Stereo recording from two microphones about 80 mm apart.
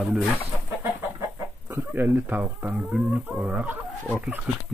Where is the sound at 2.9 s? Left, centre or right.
Centre.